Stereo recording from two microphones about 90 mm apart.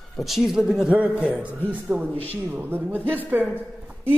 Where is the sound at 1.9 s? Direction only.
25° right (ahead or behind).